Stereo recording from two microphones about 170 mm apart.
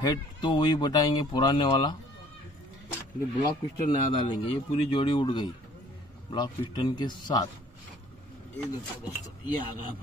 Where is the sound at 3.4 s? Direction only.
30° left (ahead or behind).